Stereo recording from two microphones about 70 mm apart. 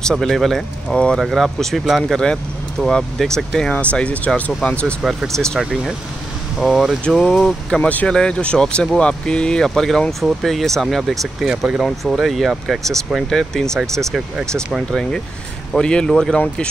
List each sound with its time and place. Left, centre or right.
0.1 s speech: centre
0.9 s speech: centre
1.2 s speech: centre
3.9 s speech: centre
5.6 s speech: centre
7.3 s speech: centre
7.8 s speech: centre
11.4 s speech: centre
11.8 s speech: centre
13.3 s speech: centre